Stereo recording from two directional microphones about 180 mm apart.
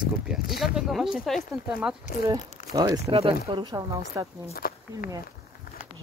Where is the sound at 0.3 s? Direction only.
Centre (ahead or behind).